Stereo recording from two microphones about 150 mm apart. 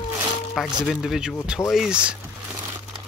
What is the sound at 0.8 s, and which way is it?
Speech, 5° right (ahead or behind).